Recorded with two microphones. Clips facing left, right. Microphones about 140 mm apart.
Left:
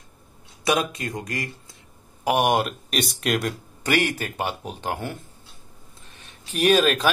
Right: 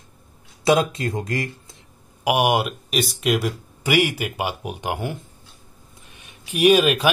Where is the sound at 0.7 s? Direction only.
25° right (ahead or behind).